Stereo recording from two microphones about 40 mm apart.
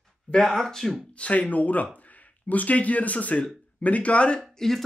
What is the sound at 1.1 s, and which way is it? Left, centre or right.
Speech, left.